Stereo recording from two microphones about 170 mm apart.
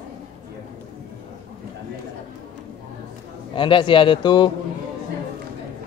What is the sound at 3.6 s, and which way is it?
Speech, 30° left (ahead or behind).